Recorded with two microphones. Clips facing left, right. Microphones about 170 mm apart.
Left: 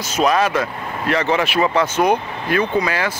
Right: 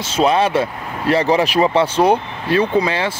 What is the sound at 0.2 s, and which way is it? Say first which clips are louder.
Speech: right 2 dB; 30° right (ahead or behind).